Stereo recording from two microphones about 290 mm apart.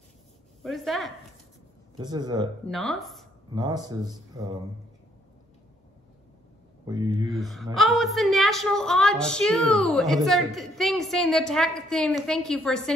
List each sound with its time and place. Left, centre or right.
0.6 s a woman's voice: centre
2.0 s speech: centre
2.7 s a woman's voice: centre
3.5 s speech: centre
6.9 s speech: centre
7.3 s a woman's voice: centre